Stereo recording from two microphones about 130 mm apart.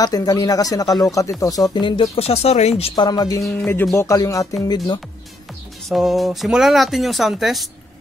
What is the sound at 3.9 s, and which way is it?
Speech, 25° left (ahead or behind).